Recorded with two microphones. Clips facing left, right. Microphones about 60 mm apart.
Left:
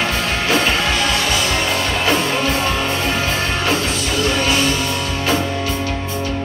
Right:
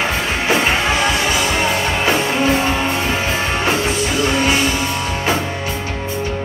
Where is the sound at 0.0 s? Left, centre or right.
Right.